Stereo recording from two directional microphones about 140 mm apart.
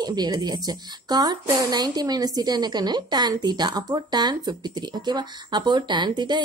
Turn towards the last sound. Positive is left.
turn(degrees=-30)  # may be behind; listen again after turning